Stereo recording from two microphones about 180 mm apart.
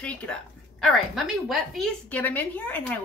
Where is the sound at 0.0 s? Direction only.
5° left (ahead or behind).